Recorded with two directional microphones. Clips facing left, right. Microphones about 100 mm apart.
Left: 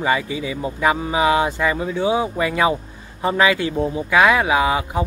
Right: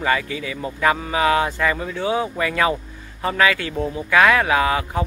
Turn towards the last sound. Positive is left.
turn(degrees=15)  # may be behind; listen again after turning